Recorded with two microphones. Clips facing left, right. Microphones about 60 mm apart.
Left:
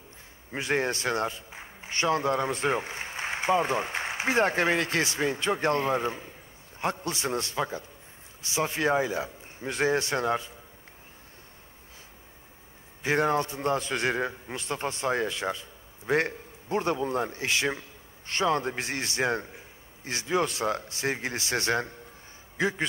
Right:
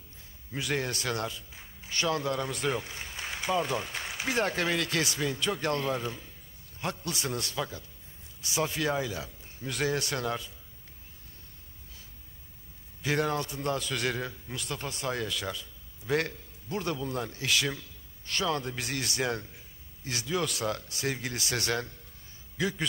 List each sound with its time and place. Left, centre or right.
0.5 s a man's voice: left
13.0 s a man's voice: left